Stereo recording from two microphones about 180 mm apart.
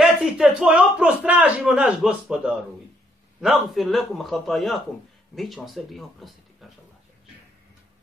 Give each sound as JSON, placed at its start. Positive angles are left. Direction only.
{"t": 0.0, "sound": "a man's voice", "side_deg": -5}